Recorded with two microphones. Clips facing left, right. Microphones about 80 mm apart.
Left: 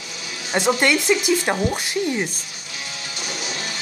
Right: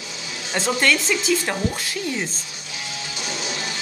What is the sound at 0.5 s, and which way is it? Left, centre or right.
Speech, centre.